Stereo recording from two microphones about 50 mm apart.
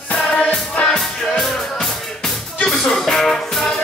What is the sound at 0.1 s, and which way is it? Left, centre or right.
Music, left.